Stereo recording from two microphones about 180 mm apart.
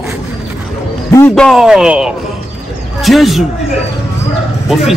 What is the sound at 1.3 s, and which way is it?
A man's voice, centre (ahead or behind).